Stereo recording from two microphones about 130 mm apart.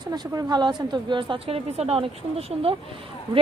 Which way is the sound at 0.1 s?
30° right (ahead or behind).